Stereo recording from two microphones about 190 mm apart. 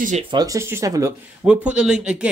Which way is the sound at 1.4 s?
5° right (ahead or behind).